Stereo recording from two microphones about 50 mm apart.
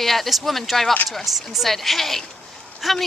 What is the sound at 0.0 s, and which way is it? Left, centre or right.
Speech, centre.